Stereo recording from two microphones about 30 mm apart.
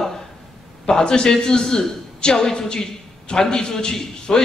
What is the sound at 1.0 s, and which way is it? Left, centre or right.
A man's voice, left.